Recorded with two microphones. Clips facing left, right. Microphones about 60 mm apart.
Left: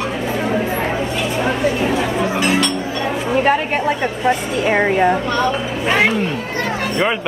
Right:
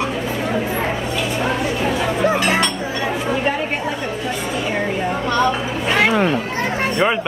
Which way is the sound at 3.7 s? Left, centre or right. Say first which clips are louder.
Left 4 dB; left.